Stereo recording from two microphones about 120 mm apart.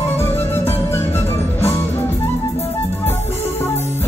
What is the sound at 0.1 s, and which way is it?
Music, 20° left (ahead or behind).